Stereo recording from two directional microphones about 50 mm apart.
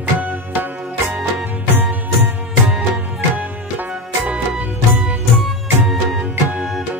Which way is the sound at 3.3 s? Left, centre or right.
Right.